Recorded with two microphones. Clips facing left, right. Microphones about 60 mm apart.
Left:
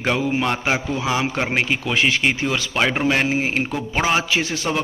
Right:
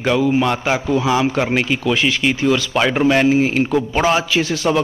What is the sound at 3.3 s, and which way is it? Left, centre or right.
Speech, left.